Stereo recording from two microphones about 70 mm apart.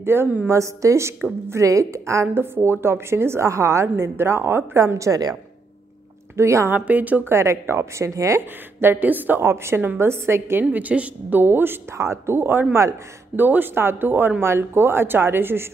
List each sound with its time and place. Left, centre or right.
0.0 s a woman's voice: right
0.5 s a woman's voice: right
2.3 s a woman's voice: right
6.3 s a woman's voice: right
6.7 s speech: right
7.3 s a woman's voice: right
8.4 s speech: right
9.4 s a woman's voice: right
10.6 s a woman's voice: right